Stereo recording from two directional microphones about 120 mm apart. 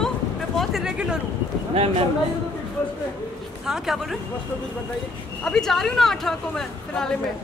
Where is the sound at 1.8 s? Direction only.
50° right (ahead or behind).